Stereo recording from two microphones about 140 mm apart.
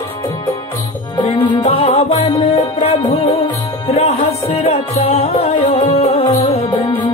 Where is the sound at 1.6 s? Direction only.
45° left (ahead or behind).